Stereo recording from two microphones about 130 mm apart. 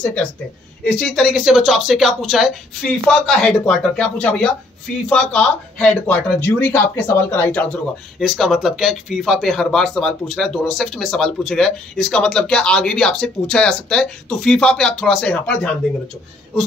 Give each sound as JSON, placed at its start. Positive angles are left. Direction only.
{"t": 0.0, "sound": "speech", "side_deg": 15}
{"t": 8.2, "sound": "speech", "side_deg": 0}